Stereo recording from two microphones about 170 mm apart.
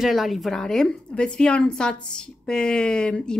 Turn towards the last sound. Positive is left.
turn(degrees=5)  # may be behind; listen again after turning